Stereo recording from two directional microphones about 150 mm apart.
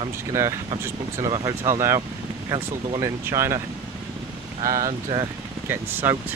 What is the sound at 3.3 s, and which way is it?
Speech, 15° right (ahead or behind).